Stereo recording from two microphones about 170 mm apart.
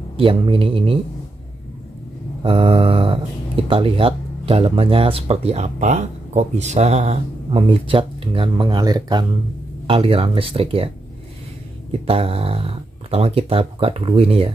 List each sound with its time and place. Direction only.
0.2 s speech: 30° right (ahead or behind)
2.4 s speech: 30° right (ahead or behind)
9.8 s speech: 35° right (ahead or behind)
11.9 s speech: 35° right (ahead or behind)